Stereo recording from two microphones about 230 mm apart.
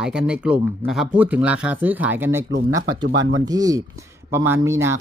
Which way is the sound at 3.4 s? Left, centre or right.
Centre.